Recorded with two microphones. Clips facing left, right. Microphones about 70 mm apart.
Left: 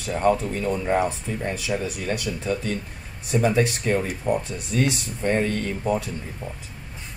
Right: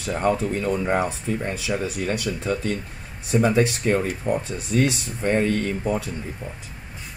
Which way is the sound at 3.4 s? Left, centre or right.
Centre.